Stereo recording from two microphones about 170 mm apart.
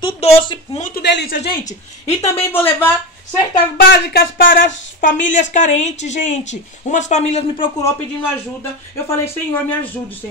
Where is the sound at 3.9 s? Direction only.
65° left (ahead or behind); by 7.7 s 40° left (ahead or behind).